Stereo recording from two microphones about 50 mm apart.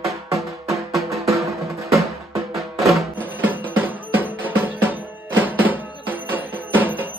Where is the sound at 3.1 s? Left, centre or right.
Right.